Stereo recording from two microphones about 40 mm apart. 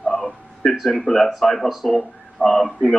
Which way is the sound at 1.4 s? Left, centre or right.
Centre.